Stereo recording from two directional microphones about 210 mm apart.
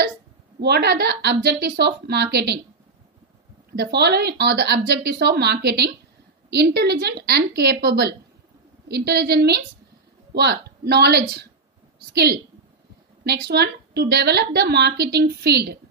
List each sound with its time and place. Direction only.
0.6 s a woman's voice: 50° right (ahead or behind)
3.7 s a woman's voice: 50° right (ahead or behind)